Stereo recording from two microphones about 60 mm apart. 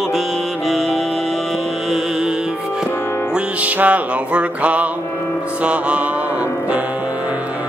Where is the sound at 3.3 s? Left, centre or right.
Right.